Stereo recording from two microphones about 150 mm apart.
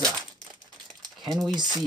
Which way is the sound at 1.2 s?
Centre (ahead or behind).